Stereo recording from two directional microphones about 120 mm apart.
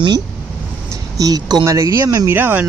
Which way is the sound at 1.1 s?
30° right (ahead or behind).